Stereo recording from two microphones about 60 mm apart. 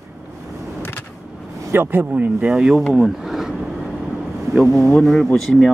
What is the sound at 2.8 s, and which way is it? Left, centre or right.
Speech, centre.